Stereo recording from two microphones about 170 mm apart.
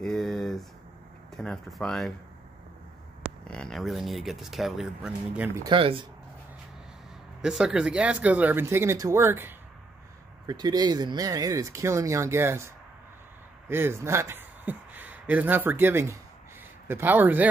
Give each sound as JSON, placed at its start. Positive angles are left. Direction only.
{"t": 0.0, "sound": "a sound", "side_deg": 0}
{"t": 1.3, "sound": "speech", "side_deg": 0}
{"t": 3.4, "sound": "speech", "side_deg": 5}
{"t": 5.6, "sound": "speech", "side_deg": -30}
{"t": 7.4, "sound": "speech", "side_deg": -5}
{"t": 10.4, "sound": "a man's voice", "side_deg": -25}